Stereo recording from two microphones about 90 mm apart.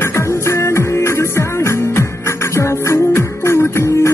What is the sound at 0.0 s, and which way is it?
Music, 30° left (ahead or behind).